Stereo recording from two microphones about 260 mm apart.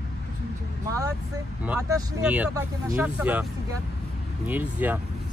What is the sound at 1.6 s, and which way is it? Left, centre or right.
Speech, centre.